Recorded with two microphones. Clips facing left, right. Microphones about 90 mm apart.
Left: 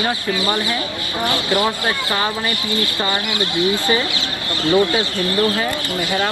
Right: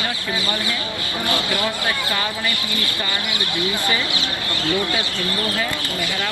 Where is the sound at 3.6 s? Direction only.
25° left (ahead or behind).